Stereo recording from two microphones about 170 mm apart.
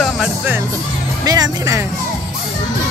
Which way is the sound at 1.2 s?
25° right (ahead or behind).